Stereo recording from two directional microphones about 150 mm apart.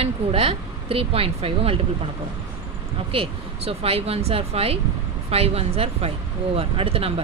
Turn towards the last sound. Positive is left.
turn(degrees=-40)  # may be behind; listen again after turning